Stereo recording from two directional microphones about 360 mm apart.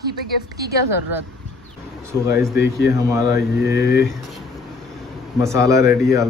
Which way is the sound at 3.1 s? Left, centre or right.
Centre.